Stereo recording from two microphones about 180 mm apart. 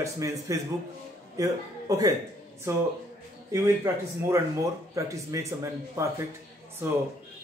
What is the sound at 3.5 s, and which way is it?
Speech, 15° right (ahead or behind).